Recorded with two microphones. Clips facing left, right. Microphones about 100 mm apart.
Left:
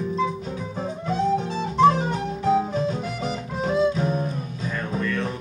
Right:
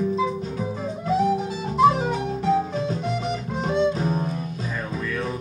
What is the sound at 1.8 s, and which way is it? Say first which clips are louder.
Music: even; 5° right (ahead or behind).